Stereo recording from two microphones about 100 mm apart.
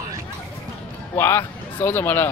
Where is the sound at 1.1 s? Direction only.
25° left (ahead or behind).